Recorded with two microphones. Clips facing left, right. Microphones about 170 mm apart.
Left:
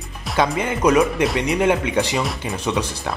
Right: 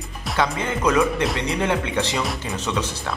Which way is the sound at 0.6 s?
10° left (ahead or behind).